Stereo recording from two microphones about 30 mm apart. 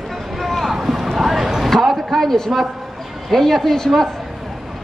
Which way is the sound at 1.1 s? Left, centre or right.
Centre.